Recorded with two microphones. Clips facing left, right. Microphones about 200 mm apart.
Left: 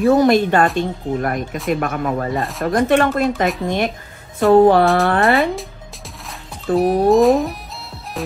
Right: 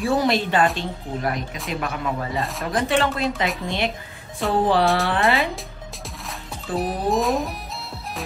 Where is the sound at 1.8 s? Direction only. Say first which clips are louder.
Left 6 dB; 50° left (ahead or behind).